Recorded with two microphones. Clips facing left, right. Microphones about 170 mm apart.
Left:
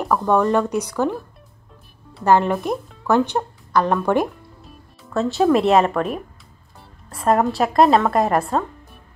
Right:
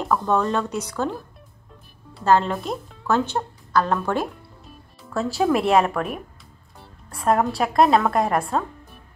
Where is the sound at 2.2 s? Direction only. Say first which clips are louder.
Left 3 dB; 15° left (ahead or behind).